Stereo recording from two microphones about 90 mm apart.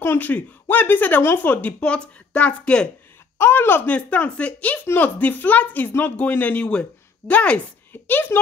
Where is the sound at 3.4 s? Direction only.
25° left (ahead or behind).